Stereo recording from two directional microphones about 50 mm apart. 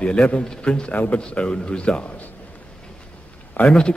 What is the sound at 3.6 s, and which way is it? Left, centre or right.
Speech, left.